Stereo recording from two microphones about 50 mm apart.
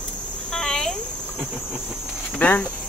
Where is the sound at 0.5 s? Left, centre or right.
Centre.